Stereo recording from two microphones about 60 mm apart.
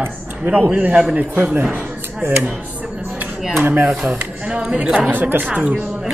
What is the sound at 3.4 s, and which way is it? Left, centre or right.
Speech, centre.